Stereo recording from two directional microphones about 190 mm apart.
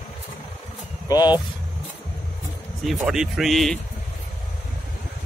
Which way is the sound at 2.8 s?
Centre (ahead or behind).